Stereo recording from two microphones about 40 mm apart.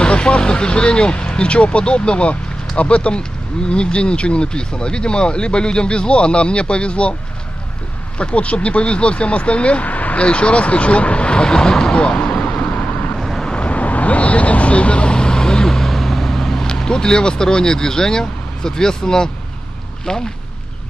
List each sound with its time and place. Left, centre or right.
0.0 s speech: left
8.2 s speech: left
11.9 s basketball bounce: left
12.4 s vehicle: left
13.2 s vehicle: centre
13.5 s vehicle: left; by 19.3 s centre
20.1 s speech: left